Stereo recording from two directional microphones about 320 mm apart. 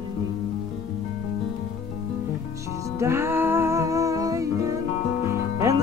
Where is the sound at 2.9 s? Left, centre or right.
Centre.